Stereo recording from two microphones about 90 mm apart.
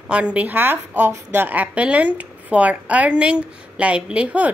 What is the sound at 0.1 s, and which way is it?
A woman's voice, 15° right (ahead or behind).